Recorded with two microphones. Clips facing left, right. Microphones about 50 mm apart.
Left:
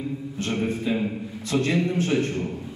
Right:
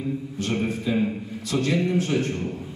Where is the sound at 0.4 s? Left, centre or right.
Left.